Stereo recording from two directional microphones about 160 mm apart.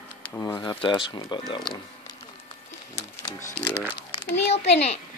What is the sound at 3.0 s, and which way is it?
Music, 50° left (ahead or behind).